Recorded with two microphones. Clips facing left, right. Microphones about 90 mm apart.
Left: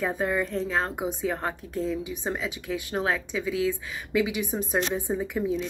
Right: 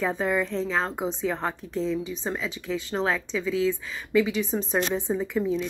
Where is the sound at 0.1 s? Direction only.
10° left (ahead or behind).